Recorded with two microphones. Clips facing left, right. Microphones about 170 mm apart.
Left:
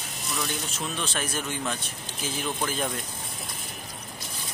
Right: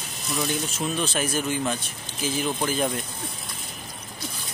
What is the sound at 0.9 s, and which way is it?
Speech, 5° right (ahead or behind).